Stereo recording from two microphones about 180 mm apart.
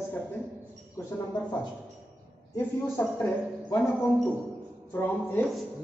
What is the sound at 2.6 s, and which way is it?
A woman's voice, 10° left (ahead or behind).